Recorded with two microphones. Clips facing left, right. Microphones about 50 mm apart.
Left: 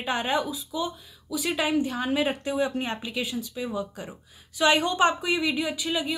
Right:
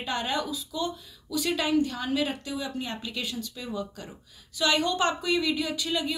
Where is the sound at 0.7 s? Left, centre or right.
Centre; by 2.9 s left.